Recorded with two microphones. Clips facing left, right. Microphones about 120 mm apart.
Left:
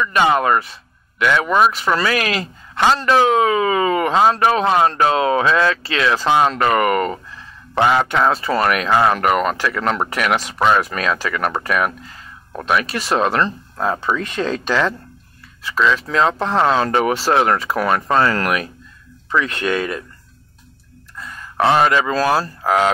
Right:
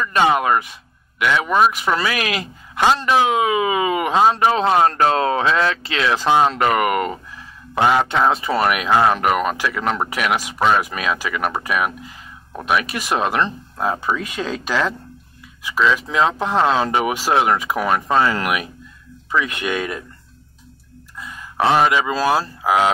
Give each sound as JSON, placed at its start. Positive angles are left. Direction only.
{"t": 0.4, "sound": "speech", "side_deg": -15}
{"t": 4.8, "sound": "speech", "side_deg": -40}
{"t": 5.4, "sound": "speech", "side_deg": -20}
{"t": 21.2, "sound": "speech", "side_deg": -10}